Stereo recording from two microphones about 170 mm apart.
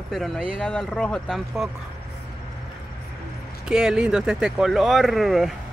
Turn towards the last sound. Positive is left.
turn(degrees=0)  # may be behind; listen again after turning